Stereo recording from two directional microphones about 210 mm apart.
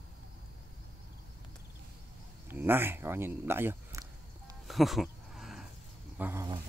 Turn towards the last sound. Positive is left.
turn(degrees=-10)  # may be behind; listen again after turning